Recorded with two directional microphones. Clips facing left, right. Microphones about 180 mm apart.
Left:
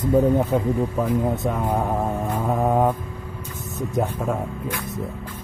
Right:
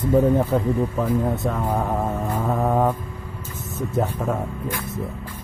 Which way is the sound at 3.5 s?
15° left (ahead or behind).